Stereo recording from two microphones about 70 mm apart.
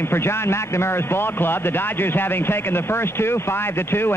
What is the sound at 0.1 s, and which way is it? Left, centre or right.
A man's voice, left.